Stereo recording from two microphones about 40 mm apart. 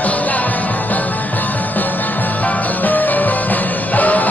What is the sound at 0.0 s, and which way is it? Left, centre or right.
Music, left.